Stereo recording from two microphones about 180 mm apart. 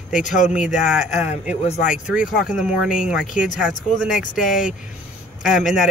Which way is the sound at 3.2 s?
45° left (ahead or behind).